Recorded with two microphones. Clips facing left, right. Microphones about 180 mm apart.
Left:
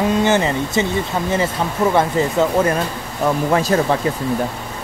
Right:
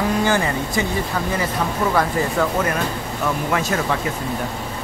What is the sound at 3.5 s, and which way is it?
Speech, 35° left (ahead or behind).